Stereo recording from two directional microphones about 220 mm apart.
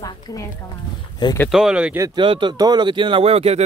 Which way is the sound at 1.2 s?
15° left (ahead or behind).